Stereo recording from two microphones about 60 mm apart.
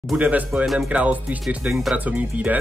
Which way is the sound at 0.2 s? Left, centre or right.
Right.